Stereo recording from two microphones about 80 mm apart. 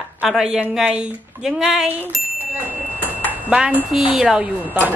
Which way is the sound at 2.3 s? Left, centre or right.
Right.